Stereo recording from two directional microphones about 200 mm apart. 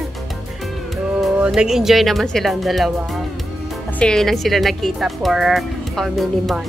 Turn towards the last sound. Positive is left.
turn(degrees=0)  # may be behind; listen again after turning